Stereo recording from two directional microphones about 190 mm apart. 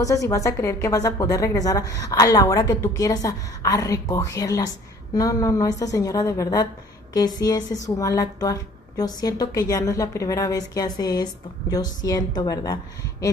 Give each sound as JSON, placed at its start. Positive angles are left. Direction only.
{"t": 0.0, "sound": "a woman's voice", "side_deg": 15}